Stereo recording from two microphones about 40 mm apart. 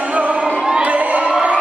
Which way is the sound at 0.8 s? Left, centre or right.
Right.